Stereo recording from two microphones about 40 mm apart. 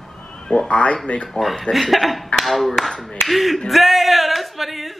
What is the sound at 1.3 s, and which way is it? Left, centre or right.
Speech, centre.